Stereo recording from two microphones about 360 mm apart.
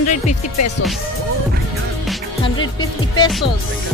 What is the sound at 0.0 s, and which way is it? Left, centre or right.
Music, left.